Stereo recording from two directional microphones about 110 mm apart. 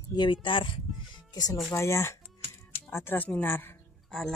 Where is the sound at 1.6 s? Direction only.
25° left (ahead or behind).